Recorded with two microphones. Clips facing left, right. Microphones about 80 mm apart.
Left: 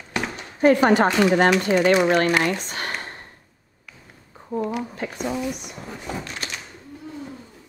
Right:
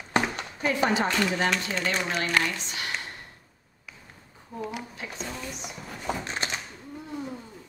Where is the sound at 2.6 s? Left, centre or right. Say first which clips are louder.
Left 4 dB; left.